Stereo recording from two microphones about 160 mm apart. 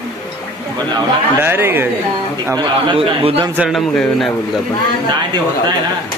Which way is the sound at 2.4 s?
25° right (ahead or behind).